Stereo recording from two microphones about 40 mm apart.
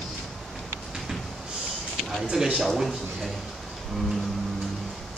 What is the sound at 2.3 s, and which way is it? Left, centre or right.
Speech, centre.